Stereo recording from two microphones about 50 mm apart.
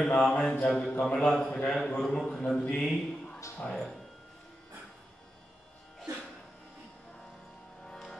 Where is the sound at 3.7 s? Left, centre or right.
Centre.